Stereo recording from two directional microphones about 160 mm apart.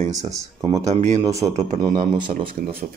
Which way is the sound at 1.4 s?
45° right (ahead or behind).